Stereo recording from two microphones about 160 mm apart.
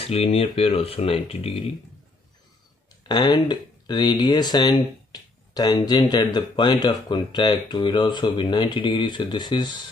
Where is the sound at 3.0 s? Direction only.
25° left (ahead or behind).